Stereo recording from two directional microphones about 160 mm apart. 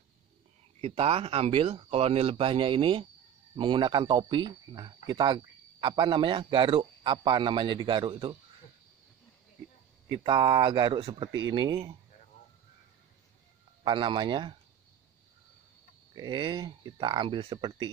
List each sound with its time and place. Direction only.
0.7 s a man's voice: 35° right (ahead or behind)
10.0 s a man's voice: 30° right (ahead or behind)
13.8 s speech: 30° right (ahead or behind)
16.2 s speech: 25° right (ahead or behind)